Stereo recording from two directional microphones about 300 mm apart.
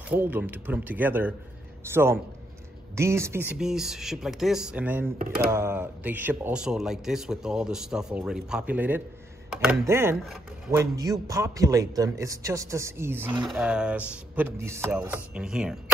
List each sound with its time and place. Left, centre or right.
0.1 s a man's voice: centre
5.2 s speech: right
5.5 s a man's voice: centre